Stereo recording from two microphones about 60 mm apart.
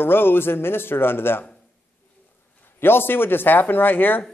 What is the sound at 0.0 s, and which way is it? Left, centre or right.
A man's voice, left.